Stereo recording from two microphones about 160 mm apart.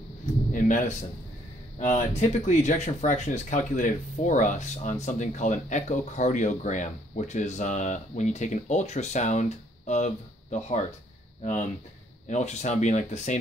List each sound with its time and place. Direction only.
0.5 s a sound: 55° left (ahead or behind)
1.8 s speech: 45° left (ahead or behind)
12.3 s speech: 45° left (ahead or behind)